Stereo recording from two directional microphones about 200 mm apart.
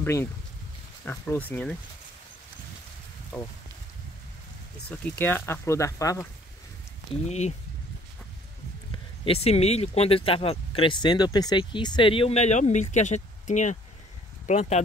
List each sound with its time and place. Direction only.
0.0 s speech: 10° left (ahead or behind)
3.3 s speech: 10° left (ahead or behind)
4.8 s speech: 10° left (ahead or behind)
7.2 s speech: 35° left (ahead or behind)
9.2 s speech: 30° left (ahead or behind)